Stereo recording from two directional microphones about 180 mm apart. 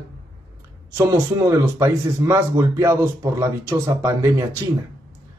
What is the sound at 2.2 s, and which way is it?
Speech, 15° right (ahead or behind).